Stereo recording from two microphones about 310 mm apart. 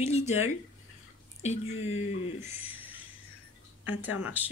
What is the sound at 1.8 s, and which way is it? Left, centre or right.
Speech, left.